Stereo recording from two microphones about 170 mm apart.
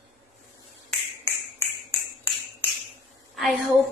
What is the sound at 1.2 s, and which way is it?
Finger snapping, 15° left (ahead or behind).